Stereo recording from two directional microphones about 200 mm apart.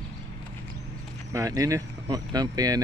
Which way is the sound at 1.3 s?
15° right (ahead or behind).